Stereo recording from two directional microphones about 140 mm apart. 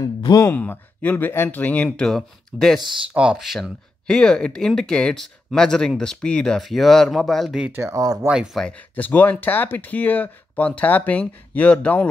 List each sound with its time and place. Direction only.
0.3 s speech: 20° left (ahead or behind); by 2.8 s 5° left (ahead or behind)
3.1 s speech: 5° right (ahead or behind)
7.7 s speech: 20° right (ahead or behind)
8.3 s speech: 5° right (ahead or behind)
8.6 s speech: 10° left (ahead or behind)